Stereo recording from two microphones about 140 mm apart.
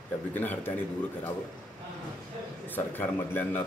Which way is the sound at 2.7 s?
15° left (ahead or behind).